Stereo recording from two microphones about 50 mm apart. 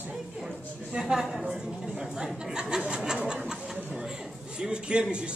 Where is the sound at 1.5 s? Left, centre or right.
Centre.